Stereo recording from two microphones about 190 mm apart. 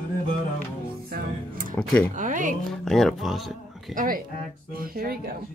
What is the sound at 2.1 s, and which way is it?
Speech, 45° right (ahead or behind).